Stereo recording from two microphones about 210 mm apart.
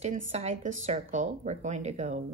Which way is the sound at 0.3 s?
30° right (ahead or behind).